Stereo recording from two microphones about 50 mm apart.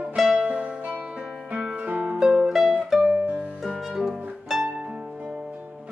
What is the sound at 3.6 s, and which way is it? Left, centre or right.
Music, centre.